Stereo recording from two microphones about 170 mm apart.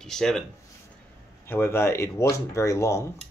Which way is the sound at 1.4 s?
15° left (ahead or behind).